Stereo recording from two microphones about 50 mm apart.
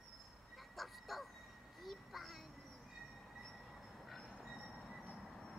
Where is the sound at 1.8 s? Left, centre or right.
Centre.